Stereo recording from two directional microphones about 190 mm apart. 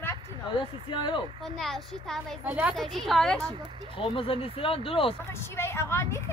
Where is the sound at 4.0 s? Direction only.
30° left (ahead or behind).